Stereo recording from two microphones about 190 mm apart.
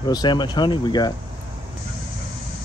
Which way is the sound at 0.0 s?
20° left (ahead or behind).